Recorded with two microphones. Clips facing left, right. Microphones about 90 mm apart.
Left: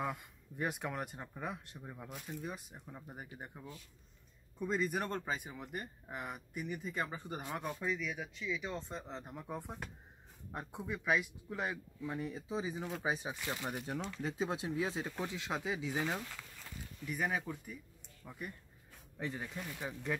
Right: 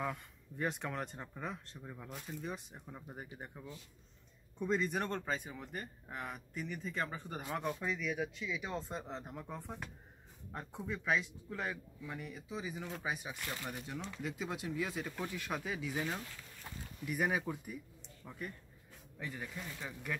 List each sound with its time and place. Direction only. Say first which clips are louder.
0.0 s speech: even; 10° left (ahead or behind)
12.0 s speech: left 5 dB; 30° left (ahead or behind)
17.0 s speech: right 2 dB; 5° right (ahead or behind)
19.1 s speech: left 4 dB; 25° left (ahead or behind)
19.4 s speech: left 2 dB; 15° left (ahead or behind)